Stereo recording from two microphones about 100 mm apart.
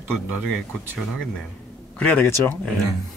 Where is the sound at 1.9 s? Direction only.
15° left (ahead or behind).